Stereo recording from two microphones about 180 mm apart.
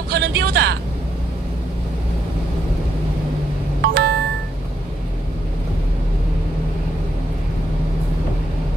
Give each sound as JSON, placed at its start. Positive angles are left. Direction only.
{"t": 0.1, "sound": "speech", "side_deg": -65}
{"t": 3.8, "sound": "music", "side_deg": -65}